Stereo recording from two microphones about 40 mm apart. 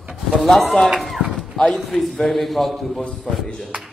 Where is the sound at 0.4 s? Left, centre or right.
Centre.